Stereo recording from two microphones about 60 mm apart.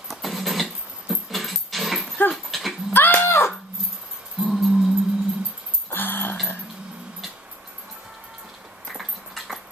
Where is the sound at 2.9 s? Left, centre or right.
Left.